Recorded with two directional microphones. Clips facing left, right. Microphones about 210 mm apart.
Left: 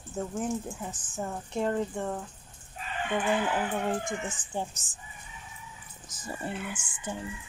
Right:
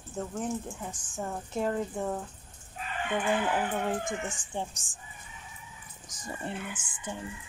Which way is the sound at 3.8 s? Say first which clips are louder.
Left 1 dB; centre (ahead or behind).